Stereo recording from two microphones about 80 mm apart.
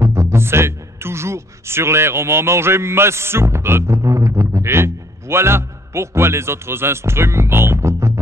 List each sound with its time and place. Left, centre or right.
0.0 s speech: right